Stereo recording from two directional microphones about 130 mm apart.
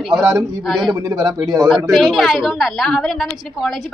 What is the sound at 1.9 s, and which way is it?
A woman's voice, centre (ahead or behind).